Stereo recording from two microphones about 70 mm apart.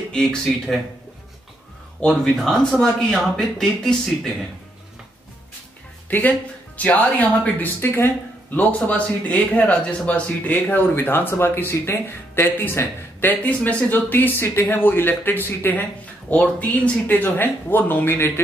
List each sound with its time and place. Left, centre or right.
0.1 s speech: centre
2.0 s speech: centre
6.0 s speech: left
13.6 s speech: centre
13.8 s speech: left